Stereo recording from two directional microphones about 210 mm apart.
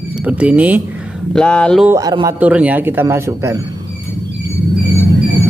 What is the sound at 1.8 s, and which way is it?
Speech, 15° right (ahead or behind).